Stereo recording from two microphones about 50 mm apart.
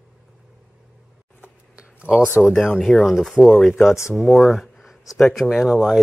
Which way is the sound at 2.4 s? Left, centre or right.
Centre.